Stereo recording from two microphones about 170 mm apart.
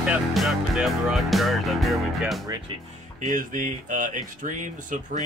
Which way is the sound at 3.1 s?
50° right (ahead or behind).